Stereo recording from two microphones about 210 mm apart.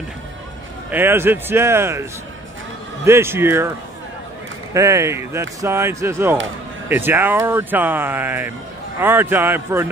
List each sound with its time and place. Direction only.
0.8 s speech: 10° right (ahead or behind)
3.1 s speech: 10° right (ahead or behind)
4.7 s speech: 15° right (ahead or behind)